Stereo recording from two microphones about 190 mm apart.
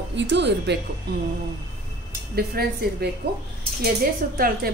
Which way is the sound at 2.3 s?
55° right (ahead or behind).